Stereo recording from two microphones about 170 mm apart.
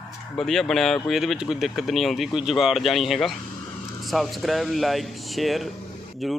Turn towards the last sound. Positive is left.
turn(degrees=0)  # may be behind; listen again after turning